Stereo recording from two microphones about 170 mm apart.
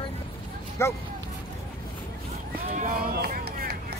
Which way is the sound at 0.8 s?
15° left (ahead or behind).